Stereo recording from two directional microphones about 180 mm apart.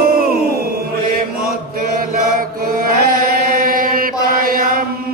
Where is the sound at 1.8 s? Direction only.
50° right (ahead or behind).